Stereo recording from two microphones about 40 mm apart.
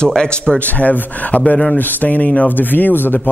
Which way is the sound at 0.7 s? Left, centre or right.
Left.